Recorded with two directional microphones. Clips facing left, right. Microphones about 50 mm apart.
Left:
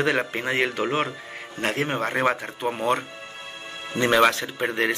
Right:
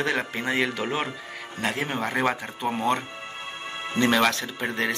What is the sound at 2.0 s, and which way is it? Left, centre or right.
Speech, centre.